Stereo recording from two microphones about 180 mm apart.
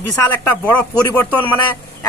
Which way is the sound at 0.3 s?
10° left (ahead or behind).